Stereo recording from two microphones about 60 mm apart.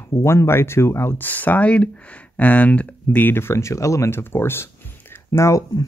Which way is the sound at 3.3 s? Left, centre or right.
Left.